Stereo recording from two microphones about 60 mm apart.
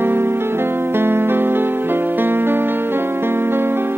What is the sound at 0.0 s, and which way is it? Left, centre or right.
Music, right.